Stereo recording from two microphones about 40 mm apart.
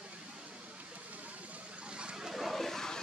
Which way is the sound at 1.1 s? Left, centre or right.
Right.